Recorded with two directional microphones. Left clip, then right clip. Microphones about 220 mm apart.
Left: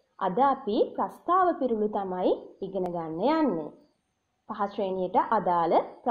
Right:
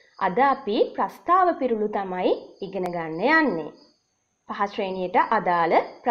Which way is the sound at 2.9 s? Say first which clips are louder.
Right 4 dB; 35° right (ahead or behind).